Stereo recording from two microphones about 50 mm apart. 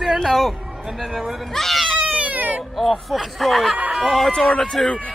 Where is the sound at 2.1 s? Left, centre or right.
Right.